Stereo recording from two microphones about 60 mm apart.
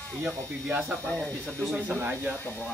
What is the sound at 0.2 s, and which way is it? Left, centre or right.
Speech, right.